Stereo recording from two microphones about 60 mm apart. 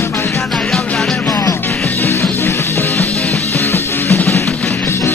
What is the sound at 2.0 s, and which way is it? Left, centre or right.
Music, left.